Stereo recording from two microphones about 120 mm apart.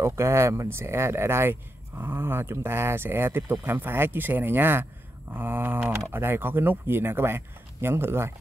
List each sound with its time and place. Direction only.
0.0 s speech: 25° right (ahead or behind)